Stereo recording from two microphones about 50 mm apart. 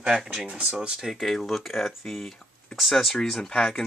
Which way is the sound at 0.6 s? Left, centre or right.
Right.